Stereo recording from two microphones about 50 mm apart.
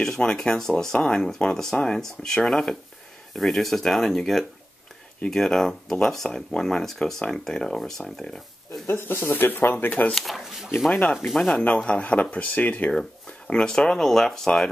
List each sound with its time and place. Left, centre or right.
0.0 s speech: centre
8.8 s speech: left
10.1 s a sound: centre
10.9 s speech: left
13.5 s speech: centre